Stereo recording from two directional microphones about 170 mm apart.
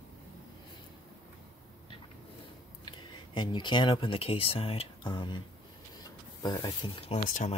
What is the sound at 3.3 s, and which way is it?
Speech, 25° left (ahead or behind).